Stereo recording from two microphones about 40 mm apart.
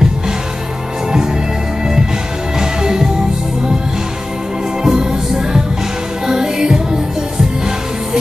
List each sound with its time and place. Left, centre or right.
2.6 s music: centre
4.8 s music: centre